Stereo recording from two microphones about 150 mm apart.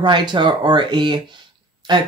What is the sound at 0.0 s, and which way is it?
Speech, 30° right (ahead or behind).